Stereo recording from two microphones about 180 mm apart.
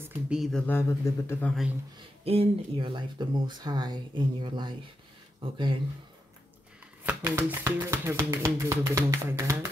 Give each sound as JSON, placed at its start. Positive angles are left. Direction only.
{"t": 0.3, "sound": "a man's voice", "side_deg": 0}
{"t": 2.0, "sound": "speech", "side_deg": -35}
{"t": 7.1, "sound": "a sound", "side_deg": -10}